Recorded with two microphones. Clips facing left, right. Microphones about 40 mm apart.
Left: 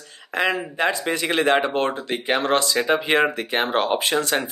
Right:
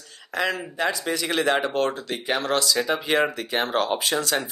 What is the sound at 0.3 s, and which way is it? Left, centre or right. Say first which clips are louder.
Speech: left 3 dB; left.